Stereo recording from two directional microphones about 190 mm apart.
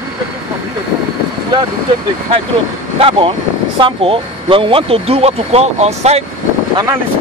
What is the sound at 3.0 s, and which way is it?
Speech, 30° right (ahead or behind).